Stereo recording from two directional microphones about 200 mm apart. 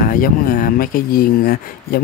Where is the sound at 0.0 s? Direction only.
45° left (ahead or behind).